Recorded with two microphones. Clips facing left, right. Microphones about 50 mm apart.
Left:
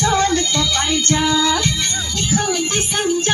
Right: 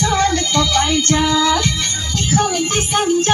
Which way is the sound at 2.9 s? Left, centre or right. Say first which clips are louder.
Right 4 dB; right.